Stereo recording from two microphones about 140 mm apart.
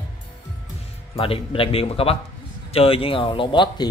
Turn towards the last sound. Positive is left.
turn(degrees=35)  # may be behind; listen again after turning